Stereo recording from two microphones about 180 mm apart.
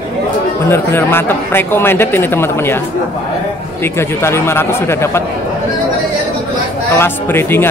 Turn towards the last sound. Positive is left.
turn(degrees=10)  # may be behind; listen again after turning